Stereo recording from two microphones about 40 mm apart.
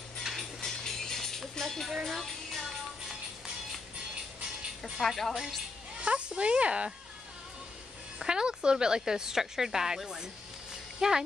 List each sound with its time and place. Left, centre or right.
0.2 s music: centre
0.6 s music: centre
5.0 s a woman's voice: centre
5.9 s speech: right
8.3 s a woman's voice: right